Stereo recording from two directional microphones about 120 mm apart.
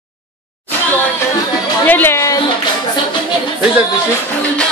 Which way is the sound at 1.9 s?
15° left (ahead or behind).